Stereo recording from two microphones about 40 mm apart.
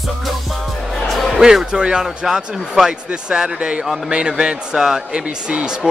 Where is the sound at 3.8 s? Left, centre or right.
Centre.